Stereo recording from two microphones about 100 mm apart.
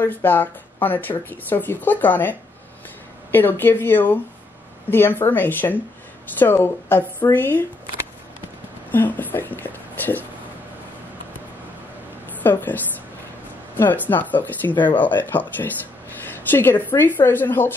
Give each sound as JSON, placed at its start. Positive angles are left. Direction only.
{"t": 0.0, "sound": "speech", "side_deg": 20}
{"t": 8.9, "sound": "speech", "side_deg": 20}
{"t": 12.4, "sound": "speech", "side_deg": 20}